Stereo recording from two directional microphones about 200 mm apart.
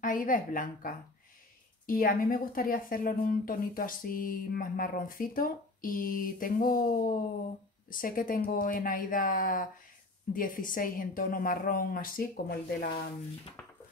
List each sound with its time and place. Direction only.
0.0 s a woman's voice: 40° left (ahead or behind)